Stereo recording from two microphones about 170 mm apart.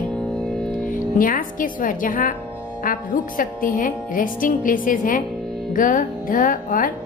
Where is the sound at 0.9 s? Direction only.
55° left (ahead or behind).